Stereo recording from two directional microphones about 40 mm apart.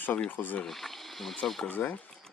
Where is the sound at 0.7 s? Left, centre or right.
Centre.